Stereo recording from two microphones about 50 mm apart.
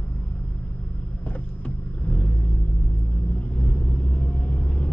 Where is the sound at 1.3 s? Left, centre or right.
Left.